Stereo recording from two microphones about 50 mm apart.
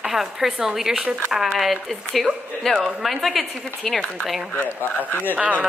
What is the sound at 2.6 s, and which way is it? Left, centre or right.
Speech, centre.